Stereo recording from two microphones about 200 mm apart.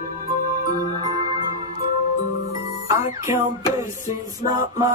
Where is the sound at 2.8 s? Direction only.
15° right (ahead or behind).